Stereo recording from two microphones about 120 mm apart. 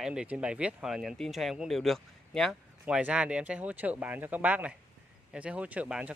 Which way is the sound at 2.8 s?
10° right (ahead or behind).